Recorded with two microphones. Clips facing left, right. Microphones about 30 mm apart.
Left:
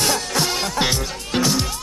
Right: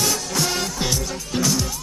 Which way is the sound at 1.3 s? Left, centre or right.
Left.